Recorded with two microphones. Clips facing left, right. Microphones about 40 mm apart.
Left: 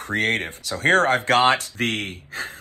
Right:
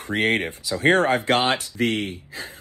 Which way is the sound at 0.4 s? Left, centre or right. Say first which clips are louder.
Right 2 dB; left.